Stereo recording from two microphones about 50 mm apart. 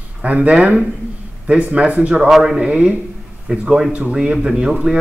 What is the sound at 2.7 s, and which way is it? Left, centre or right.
Speech, right.